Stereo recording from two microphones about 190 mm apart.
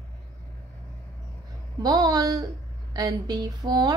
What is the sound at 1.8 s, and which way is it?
Speech, 20° right (ahead or behind).